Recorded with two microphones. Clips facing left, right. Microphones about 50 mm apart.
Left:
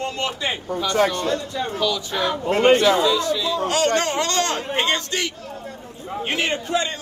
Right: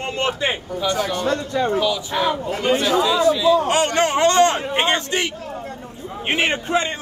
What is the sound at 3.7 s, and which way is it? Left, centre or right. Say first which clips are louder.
A man's voice: right 2 dB; right.